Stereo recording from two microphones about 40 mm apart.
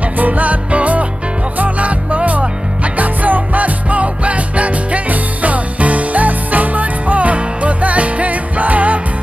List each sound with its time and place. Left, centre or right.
0.2 s music: right